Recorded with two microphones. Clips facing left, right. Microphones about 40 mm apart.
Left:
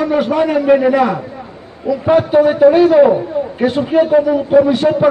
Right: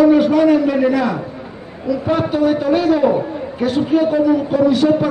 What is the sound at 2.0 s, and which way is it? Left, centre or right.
A man's voice, left.